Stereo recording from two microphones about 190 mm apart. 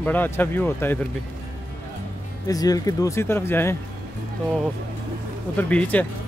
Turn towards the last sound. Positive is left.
turn(degrees=10)  # may be behind; listen again after turning